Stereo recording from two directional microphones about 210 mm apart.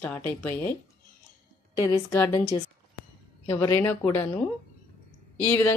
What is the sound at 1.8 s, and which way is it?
A woman's voice, 15° left (ahead or behind).